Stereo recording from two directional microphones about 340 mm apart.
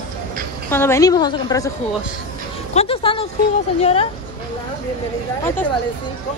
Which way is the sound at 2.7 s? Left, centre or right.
Centre.